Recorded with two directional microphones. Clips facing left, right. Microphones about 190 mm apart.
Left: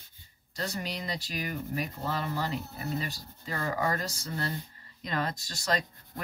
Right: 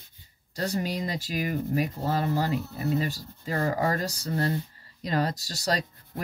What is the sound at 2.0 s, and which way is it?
Speech, 40° right (ahead or behind).